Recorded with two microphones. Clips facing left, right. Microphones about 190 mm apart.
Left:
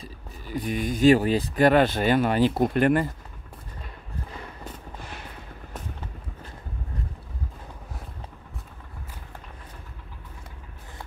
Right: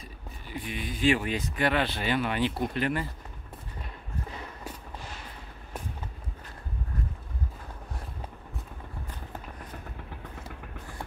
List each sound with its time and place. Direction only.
0.0 s speech: 40° left (ahead or behind)